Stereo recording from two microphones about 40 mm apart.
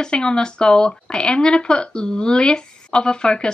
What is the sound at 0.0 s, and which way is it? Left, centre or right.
Speech, left.